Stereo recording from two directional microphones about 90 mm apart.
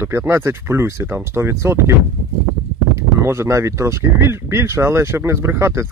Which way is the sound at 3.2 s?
30° right (ahead or behind).